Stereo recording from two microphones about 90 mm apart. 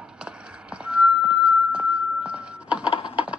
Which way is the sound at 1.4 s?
15° right (ahead or behind).